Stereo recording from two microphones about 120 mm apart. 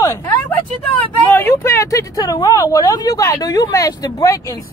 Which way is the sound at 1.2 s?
15° left (ahead or behind).